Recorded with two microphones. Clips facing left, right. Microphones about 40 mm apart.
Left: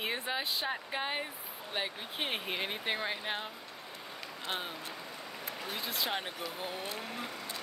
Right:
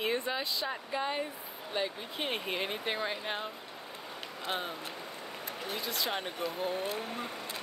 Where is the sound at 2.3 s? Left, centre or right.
Centre.